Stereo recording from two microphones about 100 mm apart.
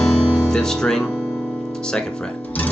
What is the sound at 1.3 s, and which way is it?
Guitar, 5° right (ahead or behind).